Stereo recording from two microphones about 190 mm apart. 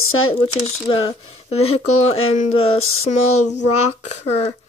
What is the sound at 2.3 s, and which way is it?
Speech, 30° left (ahead or behind).